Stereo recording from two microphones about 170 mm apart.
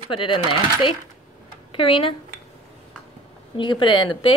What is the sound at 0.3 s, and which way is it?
A woman's voice, 30° left (ahead or behind).